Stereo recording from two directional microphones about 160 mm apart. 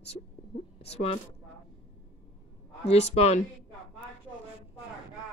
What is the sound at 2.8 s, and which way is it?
Speech, 40° left (ahead or behind).